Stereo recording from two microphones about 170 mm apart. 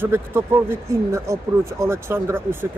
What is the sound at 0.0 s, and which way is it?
Speech, 15° right (ahead or behind).